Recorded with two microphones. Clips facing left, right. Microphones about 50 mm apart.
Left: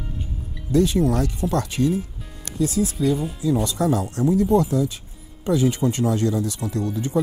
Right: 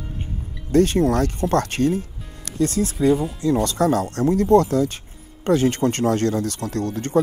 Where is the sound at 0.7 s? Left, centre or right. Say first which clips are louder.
Right 2 dB; right.